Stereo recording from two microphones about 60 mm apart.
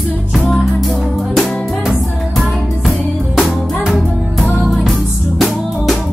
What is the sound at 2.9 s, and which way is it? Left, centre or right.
Music, centre.